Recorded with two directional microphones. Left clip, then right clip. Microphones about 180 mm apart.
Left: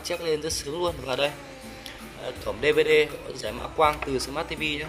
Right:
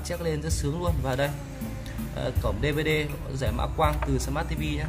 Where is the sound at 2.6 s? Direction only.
25° left (ahead or behind).